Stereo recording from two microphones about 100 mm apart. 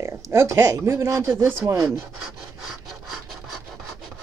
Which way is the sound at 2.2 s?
5° right (ahead or behind).